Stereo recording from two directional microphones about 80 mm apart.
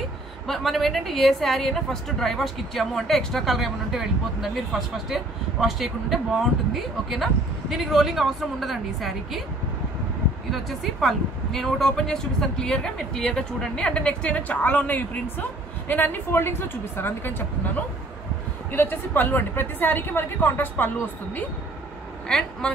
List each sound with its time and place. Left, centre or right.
0.5 s a woman's voice: centre
10.5 s a woman's voice: centre; by 21.5 s left